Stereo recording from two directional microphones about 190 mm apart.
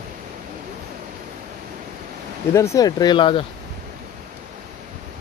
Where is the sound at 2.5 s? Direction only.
15° left (ahead or behind).